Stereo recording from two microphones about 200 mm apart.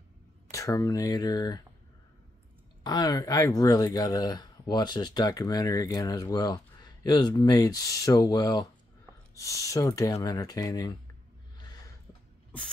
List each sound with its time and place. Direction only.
0.5 s speech: 15° left (ahead or behind)
2.8 s speech: 20° left (ahead or behind)
11.5 s snort: 20° left (ahead or behind)